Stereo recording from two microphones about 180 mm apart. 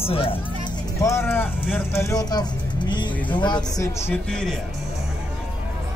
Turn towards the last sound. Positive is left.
turn(degrees=5)  # may be behind; listen again after turning